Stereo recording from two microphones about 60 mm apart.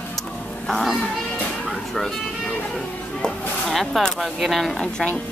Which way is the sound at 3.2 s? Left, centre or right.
Centre.